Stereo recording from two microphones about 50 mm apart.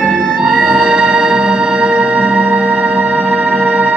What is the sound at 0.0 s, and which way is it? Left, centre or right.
Music, centre.